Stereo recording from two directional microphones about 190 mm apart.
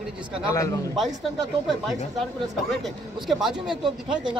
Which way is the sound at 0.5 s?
15° left (ahead or behind).